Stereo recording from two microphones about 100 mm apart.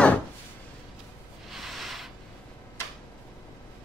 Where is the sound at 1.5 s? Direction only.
Centre (ahead or behind).